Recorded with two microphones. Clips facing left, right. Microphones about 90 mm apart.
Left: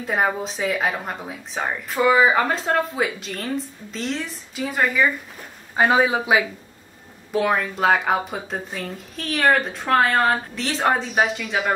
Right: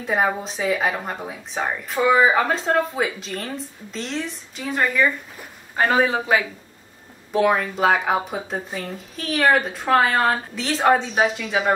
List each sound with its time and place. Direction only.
0.0 s a man's voice: centre (ahead or behind)
7.3 s speech: centre (ahead or behind)